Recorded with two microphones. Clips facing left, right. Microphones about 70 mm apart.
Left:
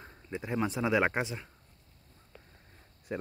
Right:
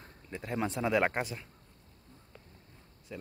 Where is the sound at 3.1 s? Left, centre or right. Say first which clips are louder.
Left 8 dB; left.